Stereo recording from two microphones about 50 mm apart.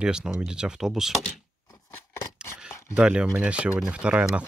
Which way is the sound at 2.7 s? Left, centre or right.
Left.